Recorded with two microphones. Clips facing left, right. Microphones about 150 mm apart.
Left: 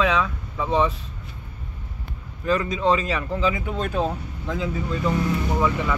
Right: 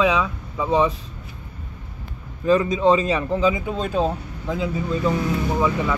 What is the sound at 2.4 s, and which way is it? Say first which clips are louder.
A man's voice: right 4 dB; 20° right (ahead or behind).